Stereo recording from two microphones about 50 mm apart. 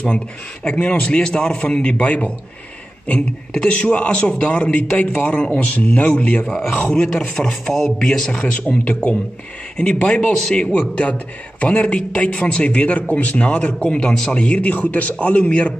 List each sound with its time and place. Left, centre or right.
0.7 s a man's voice: left
4.8 s a man's voice: left
6.8 s a man's voice: centre
8.3 s a man's voice: left
13.8 s a man's voice: centre